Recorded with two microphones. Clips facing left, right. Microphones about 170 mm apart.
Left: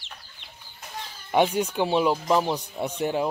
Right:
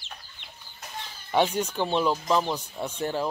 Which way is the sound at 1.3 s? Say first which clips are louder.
Left 2 dB; 10° left (ahead or behind).